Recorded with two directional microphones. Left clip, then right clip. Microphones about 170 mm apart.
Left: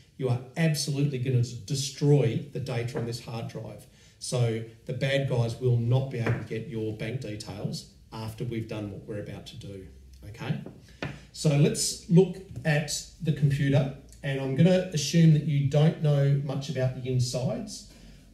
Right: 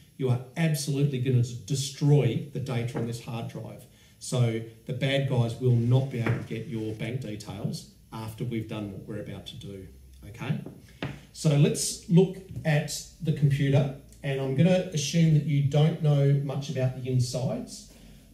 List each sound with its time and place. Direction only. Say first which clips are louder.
0.2 s speech: even; centre (ahead or behind)
11.4 s speech: even; 5° left (ahead or behind)